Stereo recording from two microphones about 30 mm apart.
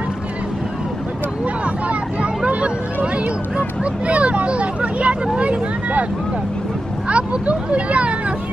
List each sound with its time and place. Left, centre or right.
2.4 s speech: right
4.1 s speech: right
7.1 s speech: right